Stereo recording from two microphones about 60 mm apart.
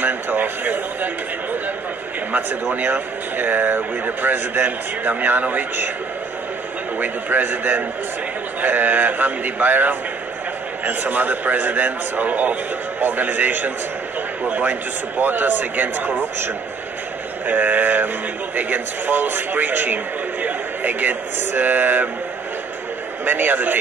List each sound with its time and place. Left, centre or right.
0.0 s speech: right
2.7 s speech: right
7.0 s a man's voice: right
17.5 s speech: right
23.2 s speech: right